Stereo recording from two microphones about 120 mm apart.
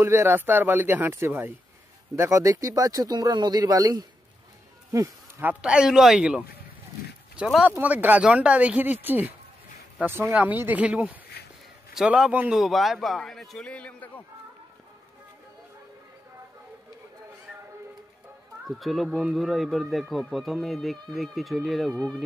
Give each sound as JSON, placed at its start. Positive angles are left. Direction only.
{"t": 0.0, "sound": "speech", "side_deg": -20}
{"t": 5.4, "sound": "speech", "side_deg": -10}
{"t": 18.7, "sound": "speech", "side_deg": 0}